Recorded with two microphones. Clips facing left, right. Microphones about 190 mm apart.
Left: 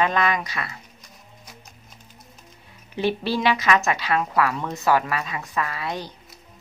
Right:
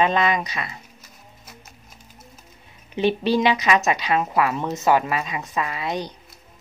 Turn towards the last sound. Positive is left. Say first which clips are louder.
# right 3 dB
turn(degrees=-20)  # may be behind; listen again after turning